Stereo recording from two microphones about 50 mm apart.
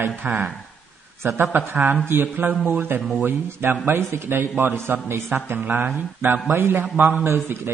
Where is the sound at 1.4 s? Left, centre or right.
Right.